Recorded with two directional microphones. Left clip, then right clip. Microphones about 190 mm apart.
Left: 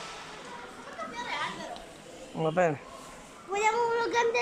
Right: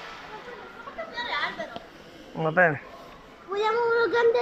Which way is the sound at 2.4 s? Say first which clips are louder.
Right 5 dB; 20° left (ahead or behind).